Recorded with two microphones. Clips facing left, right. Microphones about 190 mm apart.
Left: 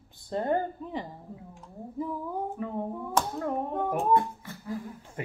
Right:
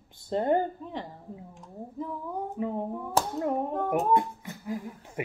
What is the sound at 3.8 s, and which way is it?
Speech, 20° right (ahead or behind).